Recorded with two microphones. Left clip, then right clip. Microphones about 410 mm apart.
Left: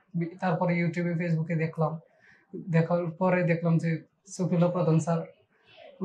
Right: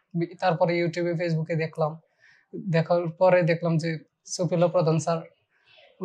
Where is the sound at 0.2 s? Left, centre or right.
Right.